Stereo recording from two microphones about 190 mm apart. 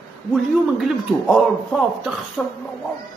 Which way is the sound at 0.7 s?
Centre (ahead or behind).